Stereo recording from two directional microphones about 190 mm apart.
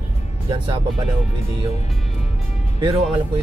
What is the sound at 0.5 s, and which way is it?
Speech, 25° right (ahead or behind).